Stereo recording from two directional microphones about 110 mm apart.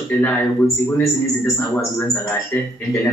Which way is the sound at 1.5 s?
20° left (ahead or behind).